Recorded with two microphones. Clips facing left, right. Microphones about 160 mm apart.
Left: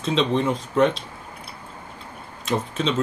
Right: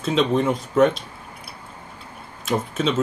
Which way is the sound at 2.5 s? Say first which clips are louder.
Right 1 dB; 5° right (ahead or behind).